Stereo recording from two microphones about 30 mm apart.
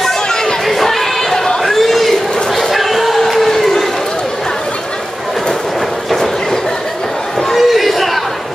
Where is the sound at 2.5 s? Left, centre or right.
Centre.